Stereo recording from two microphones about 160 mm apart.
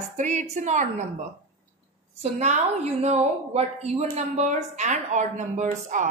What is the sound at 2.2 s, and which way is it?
A woman's voice, 45° right (ahead or behind).